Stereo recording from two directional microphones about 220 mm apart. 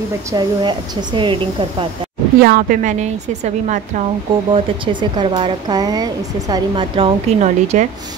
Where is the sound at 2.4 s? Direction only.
40° right (ahead or behind).